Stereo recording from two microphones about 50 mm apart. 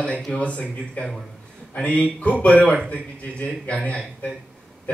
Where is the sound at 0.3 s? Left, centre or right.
Left.